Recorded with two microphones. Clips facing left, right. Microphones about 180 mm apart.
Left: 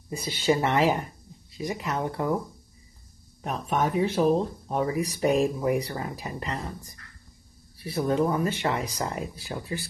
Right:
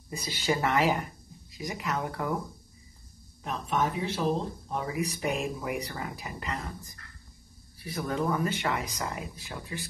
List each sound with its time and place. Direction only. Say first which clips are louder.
0.2 s speech: left 5 dB; 25° left (ahead or behind)
3.4 s speech: left 3 dB; 50° left (ahead or behind)
4.6 s speech: left 5 dB; 40° left (ahead or behind)